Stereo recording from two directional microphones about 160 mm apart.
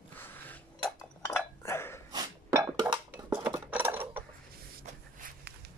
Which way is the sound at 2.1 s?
25° right (ahead or behind).